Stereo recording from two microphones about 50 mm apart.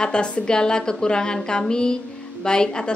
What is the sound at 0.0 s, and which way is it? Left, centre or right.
Speech, centre.